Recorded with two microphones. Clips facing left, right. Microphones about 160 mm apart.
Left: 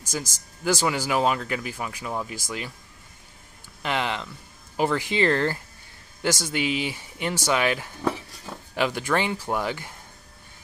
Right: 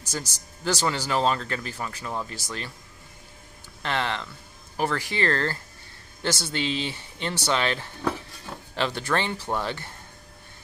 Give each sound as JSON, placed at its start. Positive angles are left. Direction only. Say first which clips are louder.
{"t": 0.7, "sound": "speech", "louder": "left 2 dB", "side_deg": 10}
{"t": 3.8, "sound": "speech", "louder": "left 1 dB", "side_deg": 15}